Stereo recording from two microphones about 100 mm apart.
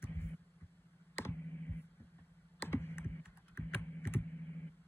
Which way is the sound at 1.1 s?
25° left (ahead or behind).